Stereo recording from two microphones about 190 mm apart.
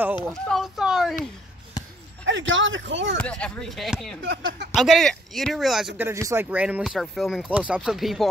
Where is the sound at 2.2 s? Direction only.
80° right.